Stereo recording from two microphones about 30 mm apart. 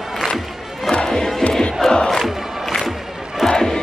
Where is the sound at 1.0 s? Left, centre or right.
Left.